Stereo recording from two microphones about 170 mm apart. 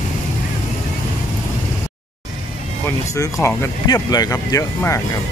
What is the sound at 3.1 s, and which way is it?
Speech, 20° left (ahead or behind).